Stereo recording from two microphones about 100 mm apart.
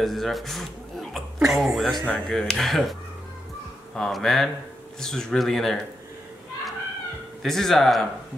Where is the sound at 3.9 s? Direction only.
Centre (ahead or behind).